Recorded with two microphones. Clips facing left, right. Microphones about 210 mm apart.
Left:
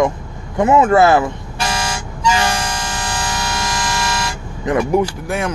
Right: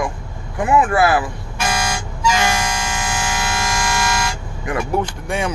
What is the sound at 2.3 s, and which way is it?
Music, 35° left (ahead or behind).